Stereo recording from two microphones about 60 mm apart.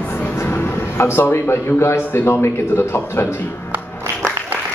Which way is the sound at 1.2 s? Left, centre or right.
Left.